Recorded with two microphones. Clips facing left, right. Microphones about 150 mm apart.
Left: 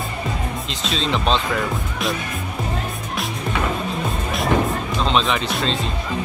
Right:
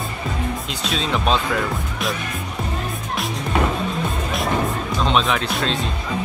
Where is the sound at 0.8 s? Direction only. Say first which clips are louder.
Even; 5° right (ahead or behind).